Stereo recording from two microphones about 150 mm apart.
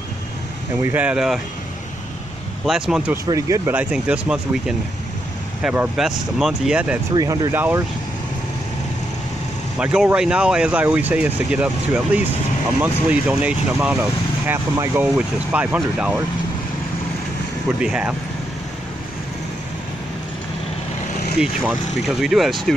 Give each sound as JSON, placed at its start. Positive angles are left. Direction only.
{"t": 0.8, "sound": "speech", "side_deg": -10}
{"t": 2.6, "sound": "speech", "side_deg": -5}
{"t": 3.3, "sound": "speech", "side_deg": -20}
{"t": 7.2, "sound": "speech", "side_deg": -25}
{"t": 7.5, "sound": "speech", "side_deg": -15}
{"t": 9.8, "sound": "speech", "side_deg": -5}
{"t": 17.8, "sound": "speech", "side_deg": -5}
{"t": 21.4, "sound": "speech", "side_deg": -5}